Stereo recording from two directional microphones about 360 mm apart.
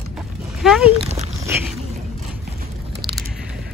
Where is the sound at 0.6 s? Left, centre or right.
Centre.